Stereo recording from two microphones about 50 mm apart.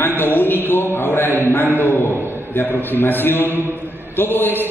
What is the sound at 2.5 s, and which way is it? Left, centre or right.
A man's voice, left.